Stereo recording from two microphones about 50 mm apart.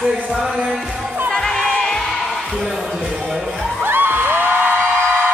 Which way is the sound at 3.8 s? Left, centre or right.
Right.